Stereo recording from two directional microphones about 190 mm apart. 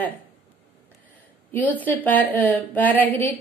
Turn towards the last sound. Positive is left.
turn(degrees=10)  # may be behind; listen again after turning